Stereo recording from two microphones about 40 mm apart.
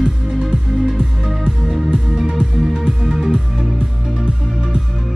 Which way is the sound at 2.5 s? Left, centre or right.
Centre.